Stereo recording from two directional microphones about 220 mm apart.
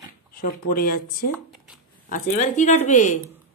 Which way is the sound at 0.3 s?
40° left (ahead or behind).